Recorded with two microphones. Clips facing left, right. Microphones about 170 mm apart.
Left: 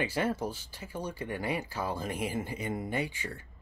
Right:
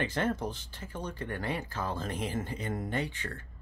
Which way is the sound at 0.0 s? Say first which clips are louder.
Even; 10° left (ahead or behind).